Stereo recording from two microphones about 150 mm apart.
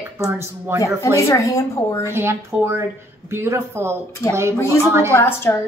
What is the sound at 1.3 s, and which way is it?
Speech, 20° left (ahead or behind).